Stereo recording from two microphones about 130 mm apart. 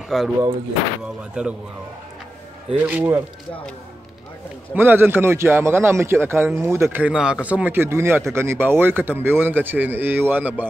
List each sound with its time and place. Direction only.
0.1 s speech: centre (ahead or behind)
1.4 s speech: 10° right (ahead or behind)
2.7 s speech: 15° right (ahead or behind)
4.7 s a man's voice: 15° right (ahead or behind)